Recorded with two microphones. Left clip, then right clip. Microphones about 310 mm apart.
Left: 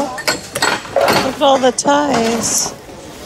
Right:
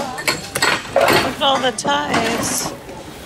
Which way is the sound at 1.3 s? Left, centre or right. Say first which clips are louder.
Left 5 dB; centre.